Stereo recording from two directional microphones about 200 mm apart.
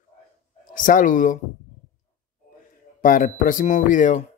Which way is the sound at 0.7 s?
40° left (ahead or behind).